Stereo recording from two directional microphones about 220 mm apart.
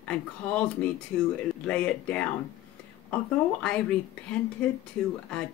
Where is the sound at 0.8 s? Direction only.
5° left (ahead or behind).